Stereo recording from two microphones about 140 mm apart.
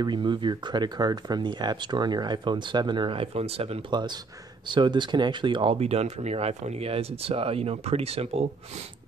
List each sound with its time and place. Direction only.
0.0 s speech: 35° right (ahead or behind)
3.9 s speech: 30° right (ahead or behind)